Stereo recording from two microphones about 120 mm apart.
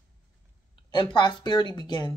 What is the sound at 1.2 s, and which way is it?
Speech, 40° left (ahead or behind).